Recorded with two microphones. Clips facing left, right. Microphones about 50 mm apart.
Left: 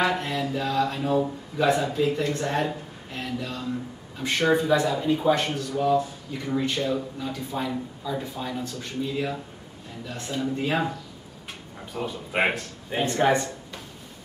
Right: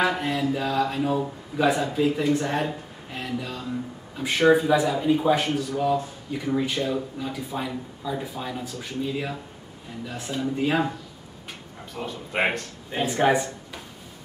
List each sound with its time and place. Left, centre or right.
0.0 s speech: centre
11.9 s speech: centre
13.0 s speech: centre